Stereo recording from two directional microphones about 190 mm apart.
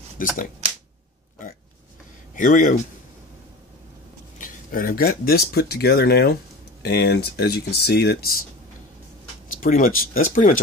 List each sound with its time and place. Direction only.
0.2 s speech: 45° left (ahead or behind)
2.3 s speech: 45° left (ahead or behind)
4.4 s speech: 50° left (ahead or behind)
9.6 s speech: 45° left (ahead or behind)